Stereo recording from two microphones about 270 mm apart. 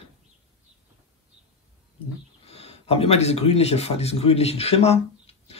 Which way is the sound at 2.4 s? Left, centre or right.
Left.